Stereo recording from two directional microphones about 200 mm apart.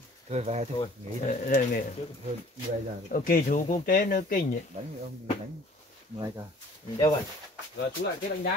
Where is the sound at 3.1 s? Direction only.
45° left (ahead or behind).